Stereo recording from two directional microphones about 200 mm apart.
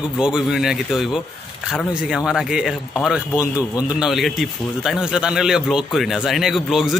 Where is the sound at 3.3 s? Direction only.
15° left (ahead or behind).